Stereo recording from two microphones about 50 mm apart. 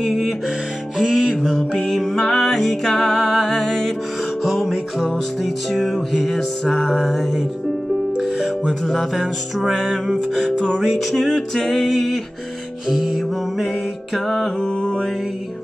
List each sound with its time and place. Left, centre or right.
0.0 s music: centre
1.8 s music: centre
4.4 s music: centre
8.2 s music: centre
9.1 s music: centre
9.8 s music: centre
10.8 s music: centre
12.8 s music: centre
14.1 s music: centre
14.6 s mantra: centre